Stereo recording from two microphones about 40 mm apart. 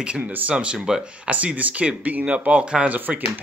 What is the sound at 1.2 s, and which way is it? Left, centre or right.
Speech, right.